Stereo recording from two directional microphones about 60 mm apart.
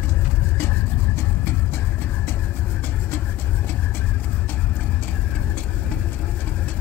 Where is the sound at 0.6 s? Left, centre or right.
Left.